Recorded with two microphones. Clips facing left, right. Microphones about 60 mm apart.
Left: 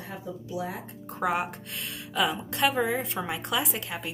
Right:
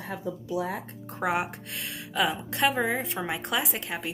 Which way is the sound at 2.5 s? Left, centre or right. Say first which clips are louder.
Right 1 dB; right.